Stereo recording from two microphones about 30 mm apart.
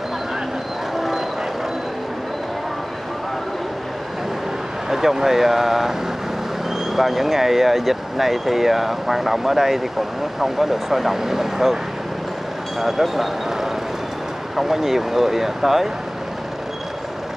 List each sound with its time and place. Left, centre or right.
0.9 s vehicle: centre
4.8 s speech: centre
7.0 s speech: centre
12.8 s speech: centre